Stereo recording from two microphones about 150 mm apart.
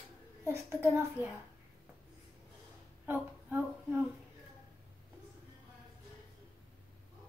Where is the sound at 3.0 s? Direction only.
10° right (ahead or behind).